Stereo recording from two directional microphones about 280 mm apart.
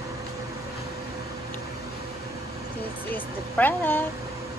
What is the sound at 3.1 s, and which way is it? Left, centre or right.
Speech, centre.